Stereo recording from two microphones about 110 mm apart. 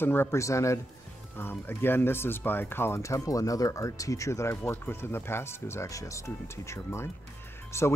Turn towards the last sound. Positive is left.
turn(degrees=25)  # may be behind; listen again after turning